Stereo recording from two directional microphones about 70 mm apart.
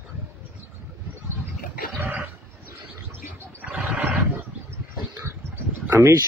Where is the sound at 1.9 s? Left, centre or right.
Right.